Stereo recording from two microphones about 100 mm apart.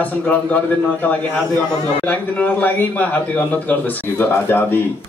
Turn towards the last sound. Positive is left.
turn(degrees=20)  # may be behind; listen again after turning